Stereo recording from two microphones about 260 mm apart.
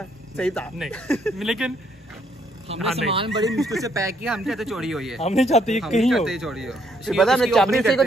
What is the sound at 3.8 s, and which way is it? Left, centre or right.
Speech, centre.